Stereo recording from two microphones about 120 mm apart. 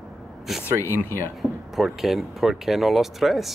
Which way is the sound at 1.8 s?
Centre (ahead or behind).